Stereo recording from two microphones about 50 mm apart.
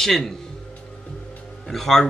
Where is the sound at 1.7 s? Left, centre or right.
Centre.